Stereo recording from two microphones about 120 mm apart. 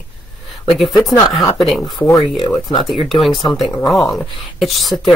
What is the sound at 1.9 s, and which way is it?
Speech, 25° left (ahead or behind).